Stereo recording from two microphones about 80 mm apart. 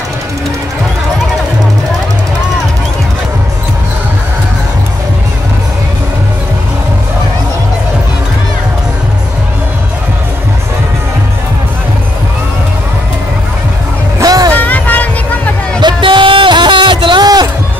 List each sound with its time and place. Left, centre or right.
14.2 s music: right
14.5 s music: left
15.8 s a sound: right